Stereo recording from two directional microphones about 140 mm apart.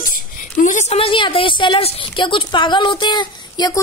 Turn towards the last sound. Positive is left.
turn(degrees=30)  # may be behind; listen again after turning